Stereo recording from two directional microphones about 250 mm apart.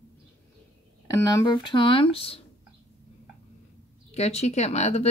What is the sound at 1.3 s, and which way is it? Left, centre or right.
Speech, centre.